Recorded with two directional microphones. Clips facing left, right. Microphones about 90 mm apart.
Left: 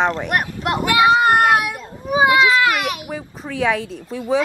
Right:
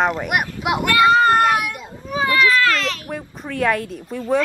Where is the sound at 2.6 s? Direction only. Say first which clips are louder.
Left 1 dB; 15° left (ahead or behind).